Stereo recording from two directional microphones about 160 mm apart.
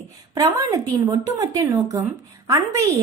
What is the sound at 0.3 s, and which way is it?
A woman's voice, 20° right (ahead or behind).